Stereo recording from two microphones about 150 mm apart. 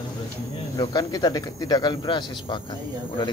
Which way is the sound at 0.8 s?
25° left (ahead or behind).